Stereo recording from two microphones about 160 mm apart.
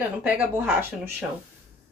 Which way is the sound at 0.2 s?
10° right (ahead or behind).